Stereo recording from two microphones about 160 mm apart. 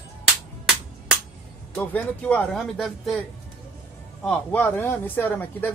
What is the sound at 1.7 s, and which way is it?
Speech, 10° left (ahead or behind).